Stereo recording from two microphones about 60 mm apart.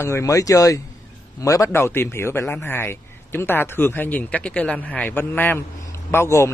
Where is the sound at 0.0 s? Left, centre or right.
Left.